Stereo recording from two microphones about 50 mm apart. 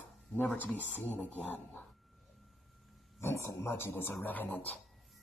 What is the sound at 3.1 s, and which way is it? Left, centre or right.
Speech, left.